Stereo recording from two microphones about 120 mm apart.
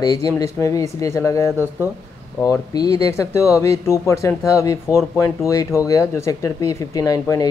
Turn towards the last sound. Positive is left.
turn(degrees=30)  # may be behind; listen again after turning